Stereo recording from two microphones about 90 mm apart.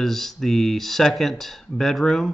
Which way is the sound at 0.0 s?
5° left (ahead or behind).